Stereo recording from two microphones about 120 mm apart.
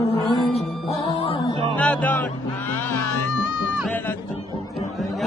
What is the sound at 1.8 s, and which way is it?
Music, 10° left (ahead or behind).